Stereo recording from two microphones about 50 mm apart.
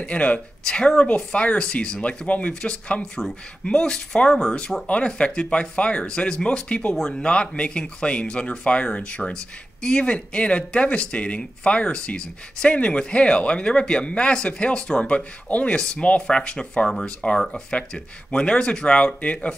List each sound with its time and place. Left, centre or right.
0.0 s speech: left
7.0 s speech: centre